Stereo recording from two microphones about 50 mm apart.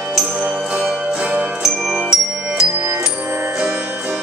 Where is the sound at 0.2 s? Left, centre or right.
Centre.